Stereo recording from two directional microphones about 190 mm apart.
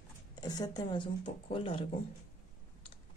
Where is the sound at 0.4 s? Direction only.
20° left (ahead or behind).